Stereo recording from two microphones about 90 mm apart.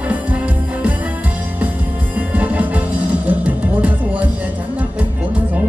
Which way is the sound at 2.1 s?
15° right (ahead or behind).